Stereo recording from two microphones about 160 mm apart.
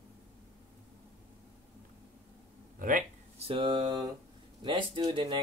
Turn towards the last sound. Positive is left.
turn(degrees=-30)  # may be behind; listen again after turning